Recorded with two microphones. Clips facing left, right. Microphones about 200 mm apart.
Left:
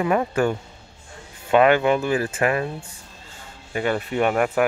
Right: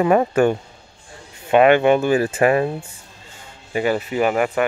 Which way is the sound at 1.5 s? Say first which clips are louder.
Right 3 dB; 15° right (ahead or behind).